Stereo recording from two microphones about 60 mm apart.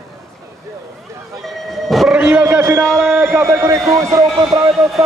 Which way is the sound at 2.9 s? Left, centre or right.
Right.